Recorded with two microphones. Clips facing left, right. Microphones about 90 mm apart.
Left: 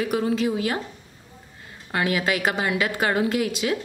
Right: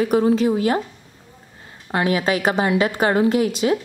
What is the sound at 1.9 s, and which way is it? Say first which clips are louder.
A woman's voice: right 4 dB; 30° right (ahead or behind).